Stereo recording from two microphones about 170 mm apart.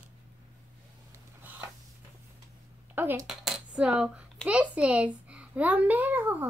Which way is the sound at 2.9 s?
10° right (ahead or behind).